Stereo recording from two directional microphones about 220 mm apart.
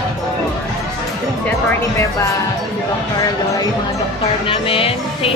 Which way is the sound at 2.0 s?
15° left (ahead or behind).